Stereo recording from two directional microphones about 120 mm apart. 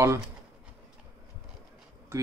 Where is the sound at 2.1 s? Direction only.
20° right (ahead or behind).